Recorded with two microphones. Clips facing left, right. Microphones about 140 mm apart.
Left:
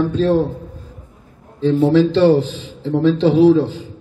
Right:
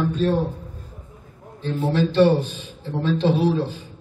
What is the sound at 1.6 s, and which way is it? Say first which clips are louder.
A man's voice: left 9 dB; 90° left.